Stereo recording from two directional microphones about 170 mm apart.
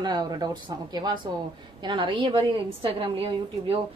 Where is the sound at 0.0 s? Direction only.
25° right (ahead or behind).